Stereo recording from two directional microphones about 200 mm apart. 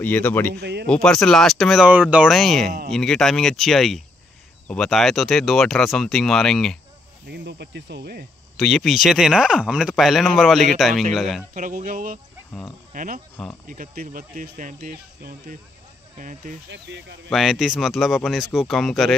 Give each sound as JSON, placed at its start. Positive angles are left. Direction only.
{"t": 0.0, "sound": "speech", "side_deg": 10}
{"t": 0.6, "sound": "speech", "side_deg": -55}
{"t": 0.8, "sound": "speech", "side_deg": 5}
{"t": 7.2, "sound": "speech", "side_deg": -60}
{"t": 8.5, "sound": "speech", "side_deg": 0}
{"t": 11.5, "sound": "speech", "side_deg": -40}
{"t": 16.6, "sound": "speech", "side_deg": -60}
{"t": 17.3, "sound": "speech", "side_deg": 0}